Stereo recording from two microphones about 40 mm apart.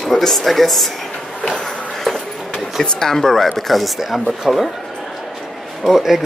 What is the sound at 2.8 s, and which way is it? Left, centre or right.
Speech, centre.